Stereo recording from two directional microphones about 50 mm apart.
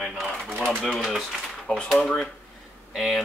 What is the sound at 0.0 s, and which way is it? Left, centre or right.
Speech, centre.